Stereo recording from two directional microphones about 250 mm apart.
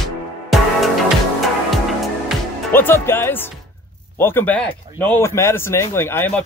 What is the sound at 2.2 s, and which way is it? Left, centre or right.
Music, centre.